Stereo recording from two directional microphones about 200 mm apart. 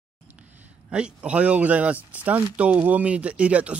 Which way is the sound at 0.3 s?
5° right (ahead or behind).